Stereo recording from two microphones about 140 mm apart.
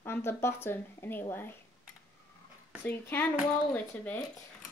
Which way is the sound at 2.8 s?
15° left (ahead or behind).